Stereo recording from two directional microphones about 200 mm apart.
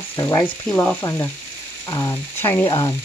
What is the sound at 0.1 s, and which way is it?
Speech, 15° left (ahead or behind).